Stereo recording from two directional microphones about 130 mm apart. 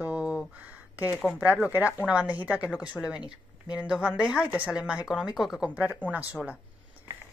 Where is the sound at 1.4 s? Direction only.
10° right (ahead or behind).